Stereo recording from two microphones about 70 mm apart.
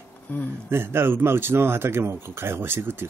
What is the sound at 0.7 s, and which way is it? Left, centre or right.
Speech, right.